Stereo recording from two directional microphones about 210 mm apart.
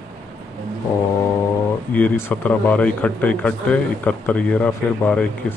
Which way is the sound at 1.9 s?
10° left (ahead or behind).